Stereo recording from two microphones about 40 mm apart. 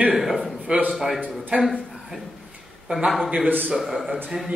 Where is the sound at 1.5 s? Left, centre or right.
Right.